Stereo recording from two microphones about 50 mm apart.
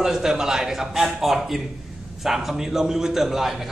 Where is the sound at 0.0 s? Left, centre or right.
Centre.